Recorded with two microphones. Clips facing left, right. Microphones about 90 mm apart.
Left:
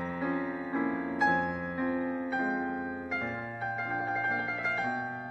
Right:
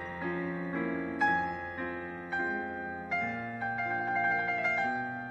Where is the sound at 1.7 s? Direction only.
15° left (ahead or behind).